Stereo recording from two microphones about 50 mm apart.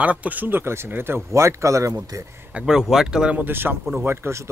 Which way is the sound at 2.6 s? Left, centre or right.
Centre.